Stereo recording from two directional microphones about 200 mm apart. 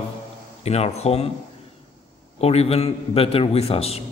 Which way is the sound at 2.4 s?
30° left (ahead or behind).